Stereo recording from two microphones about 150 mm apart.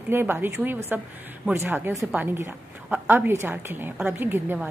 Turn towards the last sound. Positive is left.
turn(degrees=-15)  # may be behind; listen again after turning